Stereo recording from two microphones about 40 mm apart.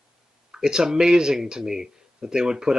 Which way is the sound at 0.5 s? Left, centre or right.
Centre.